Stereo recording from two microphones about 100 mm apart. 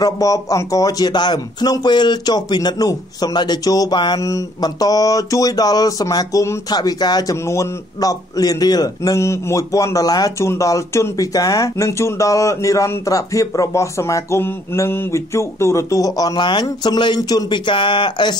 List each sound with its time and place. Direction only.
0.0 s speech: 35° left (ahead or behind)
4.2 s speech: 35° left (ahead or behind)
6.7 s speech: 40° left (ahead or behind)